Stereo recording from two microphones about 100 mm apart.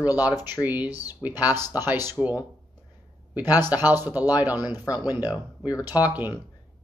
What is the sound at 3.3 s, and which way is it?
Speech, 20° right (ahead or behind).